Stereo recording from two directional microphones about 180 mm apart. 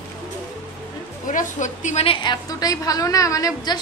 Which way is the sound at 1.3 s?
45° left (ahead or behind).